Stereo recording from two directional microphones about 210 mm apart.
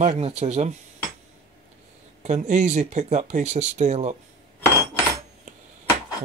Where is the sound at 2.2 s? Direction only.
35° right (ahead or behind).